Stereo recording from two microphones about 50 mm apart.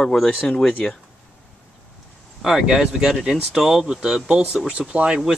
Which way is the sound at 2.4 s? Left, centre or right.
Centre.